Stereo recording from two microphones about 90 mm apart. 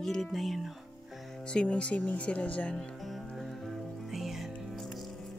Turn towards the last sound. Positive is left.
turn(degrees=0)  # may be behind; listen again after turning